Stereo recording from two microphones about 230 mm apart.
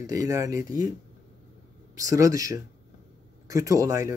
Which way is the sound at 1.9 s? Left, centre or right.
Centre.